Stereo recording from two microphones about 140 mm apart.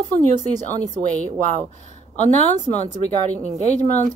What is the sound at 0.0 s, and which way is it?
Speech, 60° right (ahead or behind).